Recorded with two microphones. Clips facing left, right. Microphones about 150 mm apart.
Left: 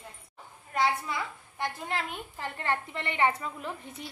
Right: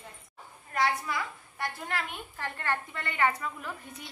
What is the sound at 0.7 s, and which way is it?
A woman's voice, 25° left (ahead or behind).